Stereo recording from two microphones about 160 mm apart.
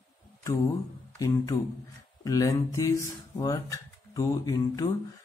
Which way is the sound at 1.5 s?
20° left (ahead or behind).